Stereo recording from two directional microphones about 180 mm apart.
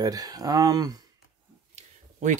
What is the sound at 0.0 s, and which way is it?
Speech, 20° right (ahead or behind).